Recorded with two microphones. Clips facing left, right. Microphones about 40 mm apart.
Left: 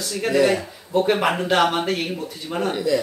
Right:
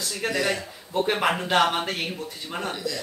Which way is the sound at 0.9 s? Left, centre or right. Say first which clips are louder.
Left 4 dB; centre.